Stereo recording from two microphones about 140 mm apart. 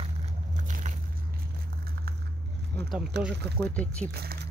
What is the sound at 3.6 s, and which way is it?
Speech, 10° left (ahead or behind).